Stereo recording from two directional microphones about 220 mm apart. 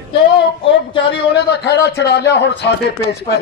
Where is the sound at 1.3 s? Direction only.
50° left (ahead or behind).